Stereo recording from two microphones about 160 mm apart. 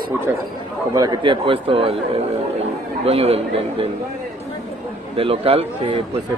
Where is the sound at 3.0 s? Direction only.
40° right (ahead or behind).